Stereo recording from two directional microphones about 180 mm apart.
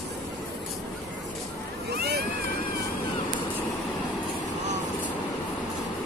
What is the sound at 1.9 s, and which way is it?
Boat, 65° right (ahead or behind).